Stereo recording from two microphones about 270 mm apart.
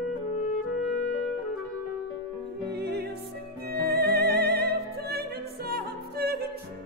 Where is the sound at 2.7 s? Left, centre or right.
Right.